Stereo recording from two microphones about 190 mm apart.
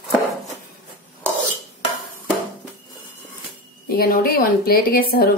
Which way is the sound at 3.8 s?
50° left (ahead or behind).